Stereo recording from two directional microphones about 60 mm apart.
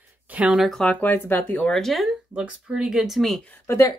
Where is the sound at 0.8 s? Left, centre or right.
Left.